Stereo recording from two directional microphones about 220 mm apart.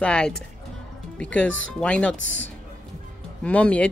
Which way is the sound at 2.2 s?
55° left (ahead or behind).